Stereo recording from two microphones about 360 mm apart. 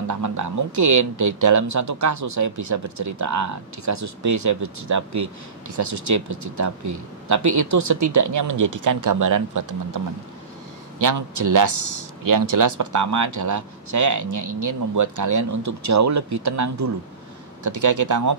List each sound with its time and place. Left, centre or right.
0.1 s speech: right
11.0 s speech: right